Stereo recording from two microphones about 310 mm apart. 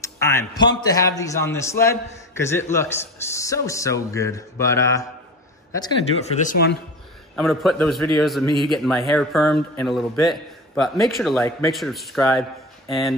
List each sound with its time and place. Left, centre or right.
0.0 s a man's voice: centre; by 6.8 s left
7.3 s a man's voice: centre